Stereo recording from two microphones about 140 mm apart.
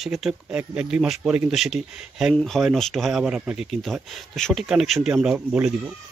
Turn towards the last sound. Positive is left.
turn(degrees=-5)  # may be behind; listen again after turning